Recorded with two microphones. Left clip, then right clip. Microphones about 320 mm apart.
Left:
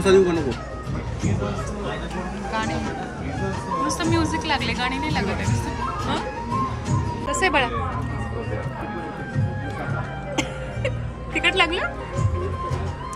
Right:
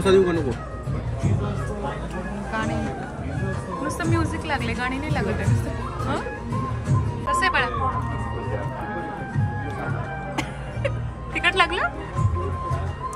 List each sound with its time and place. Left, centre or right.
0.0 s speech: centre
2.5 s speech: centre
7.2 s speech: centre
11.3 s speech: centre